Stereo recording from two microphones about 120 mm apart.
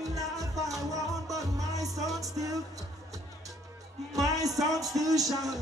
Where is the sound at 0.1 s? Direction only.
30° right (ahead or behind).